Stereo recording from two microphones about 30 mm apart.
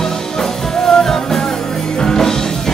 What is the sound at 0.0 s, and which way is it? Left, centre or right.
Music, centre.